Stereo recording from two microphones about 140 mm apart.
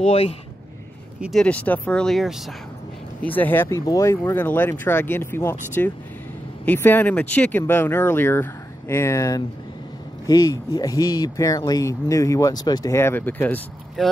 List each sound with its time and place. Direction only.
1.2 s speech: 5° left (ahead or behind)
3.2 s speech: 15° left (ahead or behind)
14.0 s speech: centre (ahead or behind)